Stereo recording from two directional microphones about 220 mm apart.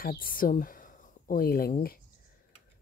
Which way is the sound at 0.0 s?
40° left (ahead or behind).